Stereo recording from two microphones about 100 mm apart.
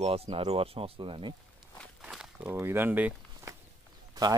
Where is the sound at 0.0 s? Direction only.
85° right.